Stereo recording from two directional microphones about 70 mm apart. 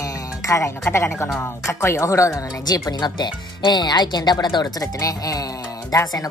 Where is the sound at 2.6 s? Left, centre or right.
Left.